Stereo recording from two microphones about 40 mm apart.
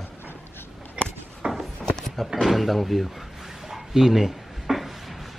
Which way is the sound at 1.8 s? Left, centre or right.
Centre.